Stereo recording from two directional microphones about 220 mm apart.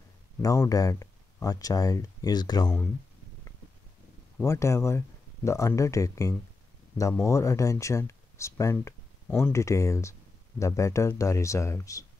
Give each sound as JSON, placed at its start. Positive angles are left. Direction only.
{"t": 0.4, "sound": "speech", "side_deg": 15}
{"t": 4.4, "sound": "speech", "side_deg": 15}